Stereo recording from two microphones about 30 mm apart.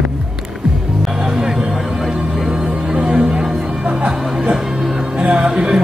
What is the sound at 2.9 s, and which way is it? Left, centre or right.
Music, right.